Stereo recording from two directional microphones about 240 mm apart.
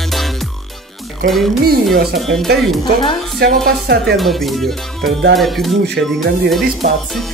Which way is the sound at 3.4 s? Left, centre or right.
Right.